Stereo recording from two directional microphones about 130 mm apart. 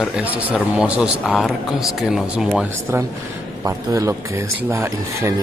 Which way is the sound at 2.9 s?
20° right (ahead or behind).